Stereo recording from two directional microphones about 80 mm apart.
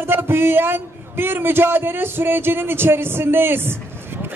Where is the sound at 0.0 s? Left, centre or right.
Right.